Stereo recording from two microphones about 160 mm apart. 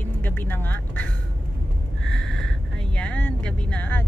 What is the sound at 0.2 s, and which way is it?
Vehicle, 10° left (ahead or behind).